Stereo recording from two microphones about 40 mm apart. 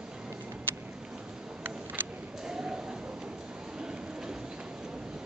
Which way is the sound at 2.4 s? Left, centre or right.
Centre.